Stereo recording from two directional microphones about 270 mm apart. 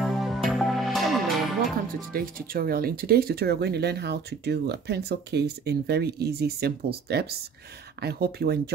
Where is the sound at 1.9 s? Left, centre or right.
Right.